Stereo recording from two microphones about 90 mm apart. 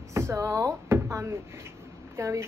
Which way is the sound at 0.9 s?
30° right (ahead or behind).